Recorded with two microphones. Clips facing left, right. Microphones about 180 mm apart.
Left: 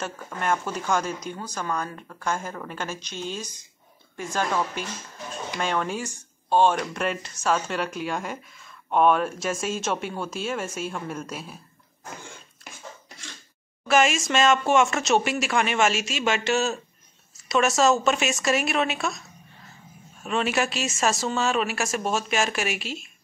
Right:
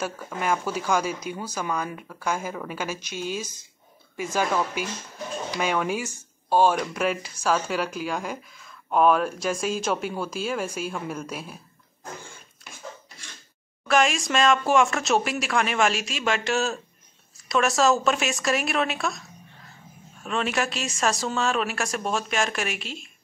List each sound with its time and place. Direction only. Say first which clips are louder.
0.0 s a woman's voice: right 1 dB; 5° right (ahead or behind)
13.8 s speech: left 1 dB; 5° left (ahead or behind)
20.2 s speech: left 2 dB; 5° left (ahead or behind)